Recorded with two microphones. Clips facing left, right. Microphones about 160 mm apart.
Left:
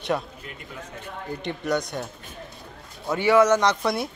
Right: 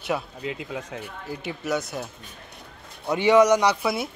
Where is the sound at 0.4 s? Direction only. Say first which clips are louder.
Right 8 dB; 90° right.